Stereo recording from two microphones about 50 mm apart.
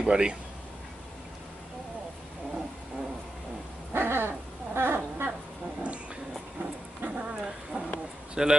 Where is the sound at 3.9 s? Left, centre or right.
Right.